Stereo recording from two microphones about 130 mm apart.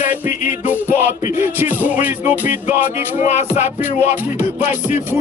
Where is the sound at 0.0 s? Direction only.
75° left (ahead or behind).